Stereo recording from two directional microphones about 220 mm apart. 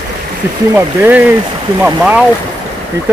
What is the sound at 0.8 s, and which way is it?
Speech, 10° right (ahead or behind).